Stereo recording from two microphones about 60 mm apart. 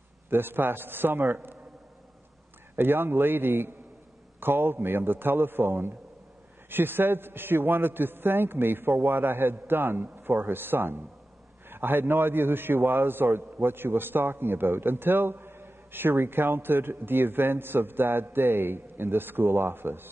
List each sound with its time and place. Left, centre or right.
0.3 s a man's voice: right
2.7 s a man's voice: right